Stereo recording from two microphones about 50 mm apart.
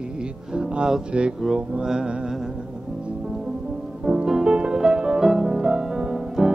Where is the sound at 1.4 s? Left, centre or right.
Centre.